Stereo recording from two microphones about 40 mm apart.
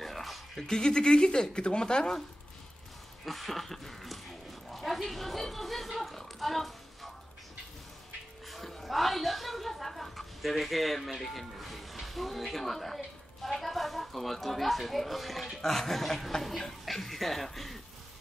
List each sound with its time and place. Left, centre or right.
0.0 s music: centre
0.6 s speech: centre
3.3 s dog: centre
8.5 s a woman's voice: centre